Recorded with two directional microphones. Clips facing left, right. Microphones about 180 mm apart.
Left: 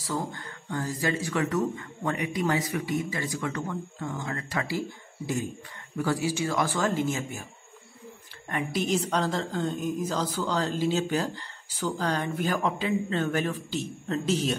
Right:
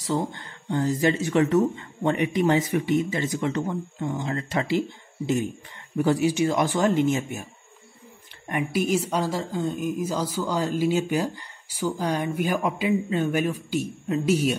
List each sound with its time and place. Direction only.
0.0 s speech: 25° right (ahead or behind)
8.5 s a woman's voice: 10° right (ahead or behind)